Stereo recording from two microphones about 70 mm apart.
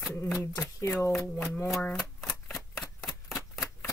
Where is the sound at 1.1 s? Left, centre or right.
Centre.